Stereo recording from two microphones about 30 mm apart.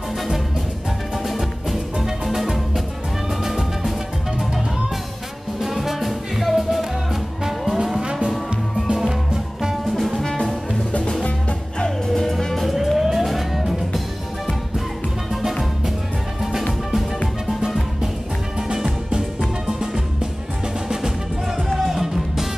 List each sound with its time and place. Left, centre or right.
2.0 s music: centre
5.6 s music: centre
8.0 s music: right
8.9 s music: centre
9.9 s music: centre
11.8 s music: centre
12.9 s music: centre
21.7 s music: centre